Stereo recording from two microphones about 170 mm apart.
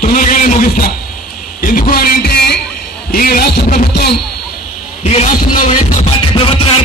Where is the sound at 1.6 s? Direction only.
55° left (ahead or behind).